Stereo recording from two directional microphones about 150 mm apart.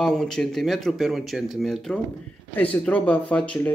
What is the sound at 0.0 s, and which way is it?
Speech, 5° left (ahead or behind).